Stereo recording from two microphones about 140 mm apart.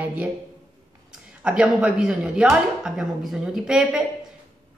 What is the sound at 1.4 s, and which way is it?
Speech, 5° right (ahead or behind).